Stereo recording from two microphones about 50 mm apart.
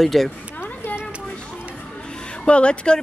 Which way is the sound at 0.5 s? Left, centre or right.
Left.